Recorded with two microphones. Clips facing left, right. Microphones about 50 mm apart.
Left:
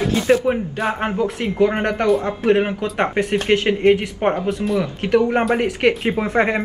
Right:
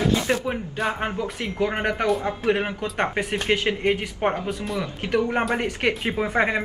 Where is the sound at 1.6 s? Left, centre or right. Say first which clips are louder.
Left 6 dB; centre.